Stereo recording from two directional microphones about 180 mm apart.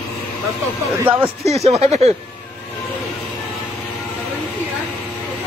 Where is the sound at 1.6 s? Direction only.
35° right (ahead or behind).